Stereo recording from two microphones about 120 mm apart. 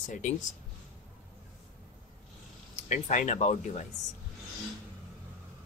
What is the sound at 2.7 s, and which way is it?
Speech, 85° left.